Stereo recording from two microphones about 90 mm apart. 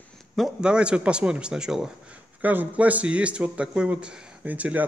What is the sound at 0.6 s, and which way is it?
Speech, 10° right (ahead or behind).